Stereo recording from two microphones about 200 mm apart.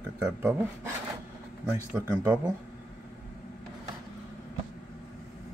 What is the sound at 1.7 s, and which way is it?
Speech, 10° right (ahead or behind).